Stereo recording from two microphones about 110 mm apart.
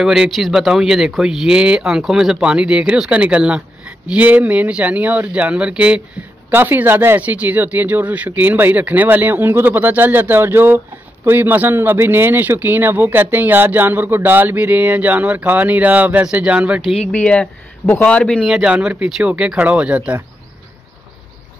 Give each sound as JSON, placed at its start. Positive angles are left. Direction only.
{"t": 0.0, "sound": "speech", "side_deg": -5}
{"t": 17.0, "sound": "speech", "side_deg": 10}
{"t": 18.4, "sound": "speech", "side_deg": -10}